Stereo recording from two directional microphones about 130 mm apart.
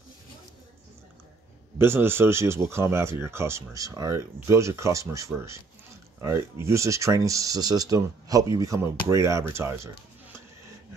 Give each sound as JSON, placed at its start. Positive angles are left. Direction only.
{"t": 1.8, "sound": "speech", "side_deg": -20}